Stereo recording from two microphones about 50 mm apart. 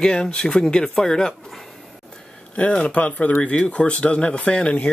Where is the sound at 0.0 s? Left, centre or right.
Centre.